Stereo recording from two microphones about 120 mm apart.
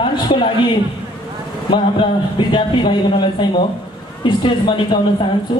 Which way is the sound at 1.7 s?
40° left (ahead or behind).